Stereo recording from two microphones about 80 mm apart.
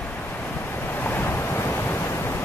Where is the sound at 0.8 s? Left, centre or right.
Left.